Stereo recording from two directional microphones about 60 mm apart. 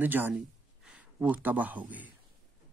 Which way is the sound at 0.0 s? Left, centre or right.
Right.